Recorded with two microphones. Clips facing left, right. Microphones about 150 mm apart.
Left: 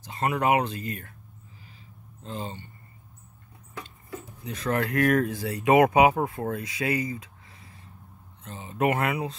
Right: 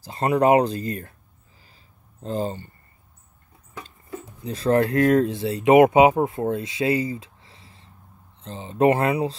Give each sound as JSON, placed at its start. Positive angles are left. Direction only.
{"t": 0.0, "sound": "speech", "side_deg": -35}
{"t": 2.2, "sound": "speech", "side_deg": -40}
{"t": 3.8, "sound": "a sound", "side_deg": -35}
{"t": 5.0, "sound": "speech", "side_deg": -25}